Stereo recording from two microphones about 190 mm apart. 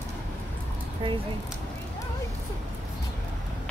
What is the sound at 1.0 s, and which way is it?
Speech, 30° right (ahead or behind).